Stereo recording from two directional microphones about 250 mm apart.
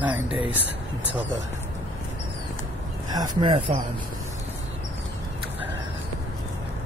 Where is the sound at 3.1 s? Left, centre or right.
Centre.